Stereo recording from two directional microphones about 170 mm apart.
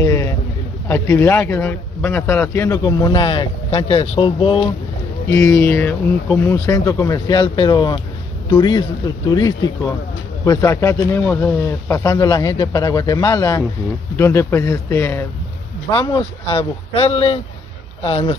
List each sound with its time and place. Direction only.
0.0 s a sound: 15° left (ahead or behind)
0.8 s speech: 15° left (ahead or behind); by 4.6 s 30° left (ahead or behind)
5.3 s speech: 20° left (ahead or behind)
15.9 s speech: 30° left (ahead or behind)